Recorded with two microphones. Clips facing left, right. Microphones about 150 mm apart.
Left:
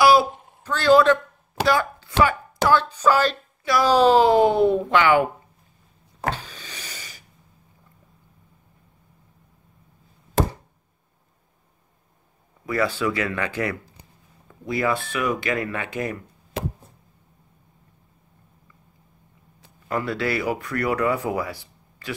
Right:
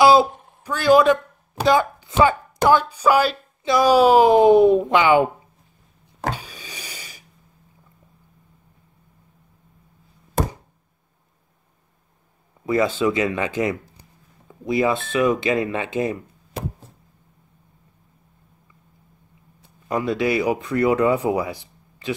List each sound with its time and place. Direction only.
0.0 s speech: 20° right (ahead or behind)
6.3 s a sound: 10° right (ahead or behind)
12.6 s speech: 20° right (ahead or behind)
19.9 s speech: 15° right (ahead or behind)